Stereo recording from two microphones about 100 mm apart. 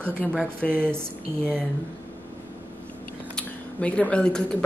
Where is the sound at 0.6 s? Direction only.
10° left (ahead or behind).